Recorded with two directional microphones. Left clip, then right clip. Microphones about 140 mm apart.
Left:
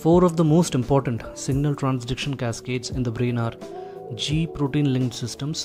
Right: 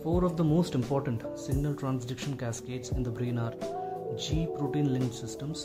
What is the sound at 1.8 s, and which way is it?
Speech, 30° left (ahead or behind).